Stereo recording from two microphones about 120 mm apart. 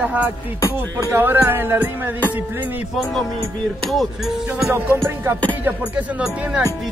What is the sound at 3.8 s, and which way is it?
Music, centre (ahead or behind).